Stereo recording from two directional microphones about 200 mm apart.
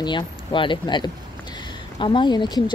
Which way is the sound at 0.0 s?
25° left (ahead or behind).